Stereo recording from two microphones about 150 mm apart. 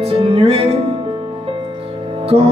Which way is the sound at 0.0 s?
35° right (ahead or behind).